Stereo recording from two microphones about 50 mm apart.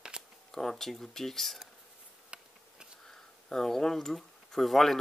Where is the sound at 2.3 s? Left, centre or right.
Right.